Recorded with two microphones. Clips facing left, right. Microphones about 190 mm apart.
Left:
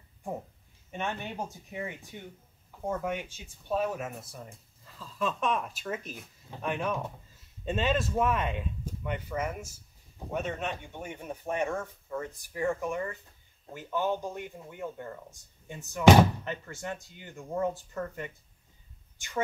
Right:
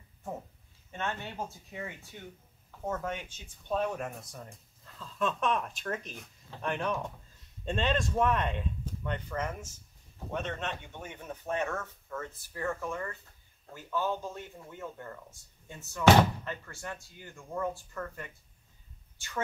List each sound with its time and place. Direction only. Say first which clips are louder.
0.9 s speech: left 2 dB; 15° left (ahead or behind)